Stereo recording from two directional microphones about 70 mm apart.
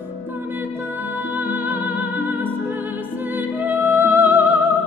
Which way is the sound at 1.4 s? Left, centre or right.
Right.